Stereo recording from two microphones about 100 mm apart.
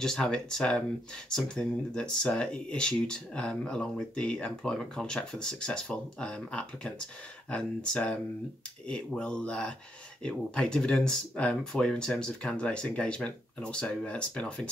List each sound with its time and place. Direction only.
0.0 s speech: 5° left (ahead or behind)